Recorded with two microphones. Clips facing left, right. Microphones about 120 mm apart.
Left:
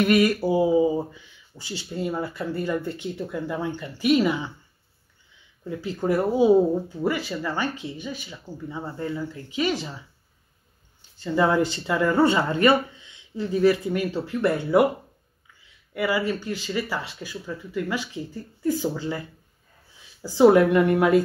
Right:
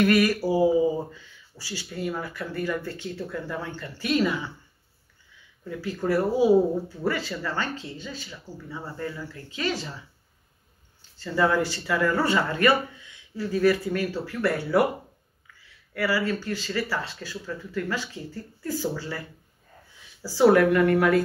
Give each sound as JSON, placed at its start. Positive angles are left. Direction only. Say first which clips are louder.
{"t": 0.0, "sound": "speech", "louder": "left 1 dB", "side_deg": 25}
{"t": 5.6, "sound": "speech", "louder": "left 2 dB", "side_deg": 20}
{"t": 11.0, "sound": "speech", "louder": "left 2 dB", "side_deg": 20}